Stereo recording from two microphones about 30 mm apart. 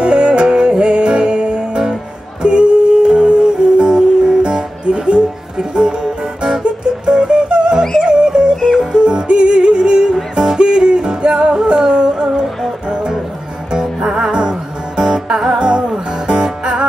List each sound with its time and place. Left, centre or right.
0.0 s music: right
2.4 s a sound: right
3.3 s music: right
8.5 s music: centre
8.9 s yodeling: right
10.3 s music: right